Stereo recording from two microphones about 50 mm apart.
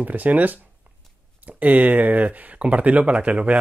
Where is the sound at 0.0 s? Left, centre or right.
Right.